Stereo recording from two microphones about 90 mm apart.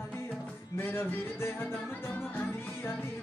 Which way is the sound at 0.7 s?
25° left (ahead or behind).